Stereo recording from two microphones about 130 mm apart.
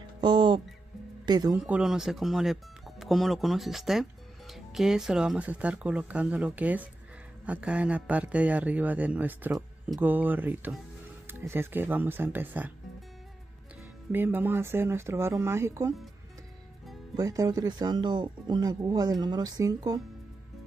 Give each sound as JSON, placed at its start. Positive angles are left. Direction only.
{"t": 0.2, "sound": "music", "side_deg": -35}
{"t": 1.2, "sound": "speech", "side_deg": -30}
{"t": 1.5, "sound": "a man's voice", "side_deg": -5}
{"t": 14.1, "sound": "speech", "side_deg": -15}
{"t": 17.2, "sound": "speech", "side_deg": -25}